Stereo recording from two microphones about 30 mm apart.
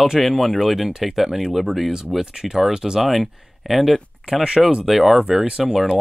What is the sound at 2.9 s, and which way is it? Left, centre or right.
Speech, centre.